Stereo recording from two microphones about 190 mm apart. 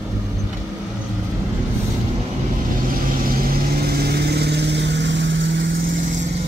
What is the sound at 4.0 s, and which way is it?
Vehicle, 60° right (ahead or behind).